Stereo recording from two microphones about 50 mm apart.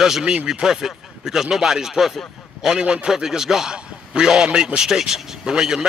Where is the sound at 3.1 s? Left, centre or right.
Centre.